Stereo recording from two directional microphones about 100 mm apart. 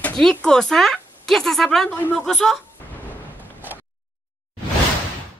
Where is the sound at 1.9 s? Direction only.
20° left (ahead or behind).